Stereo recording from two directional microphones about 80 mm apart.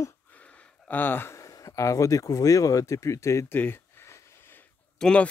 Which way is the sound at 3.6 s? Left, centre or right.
Left.